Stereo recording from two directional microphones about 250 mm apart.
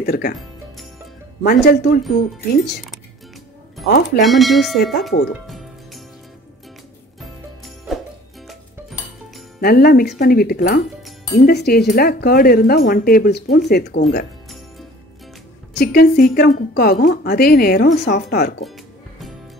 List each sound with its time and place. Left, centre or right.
0.0 s speech: left
1.4 s speech: left
3.8 s speech: left
4.2 s speech: centre
7.2 s music: centre
9.6 s speech: left
15.8 s speech: left